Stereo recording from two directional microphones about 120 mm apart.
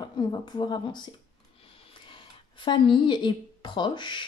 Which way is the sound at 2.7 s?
40° left (ahead or behind).